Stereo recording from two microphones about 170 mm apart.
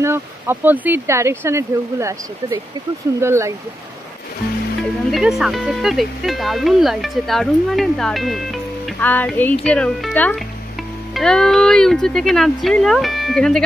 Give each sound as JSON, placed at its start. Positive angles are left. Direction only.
{"t": 0.0, "sound": "speech", "side_deg": -15}
{"t": 4.8, "sound": "speech", "side_deg": 0}